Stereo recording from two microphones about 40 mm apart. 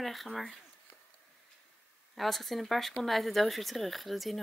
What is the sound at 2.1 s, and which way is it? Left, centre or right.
Speech, centre.